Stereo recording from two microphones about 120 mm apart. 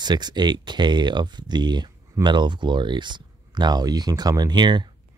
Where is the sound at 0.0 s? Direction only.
35° right (ahead or behind).